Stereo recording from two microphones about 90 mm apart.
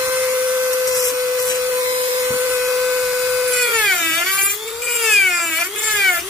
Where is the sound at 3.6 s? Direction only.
Centre (ahead or behind).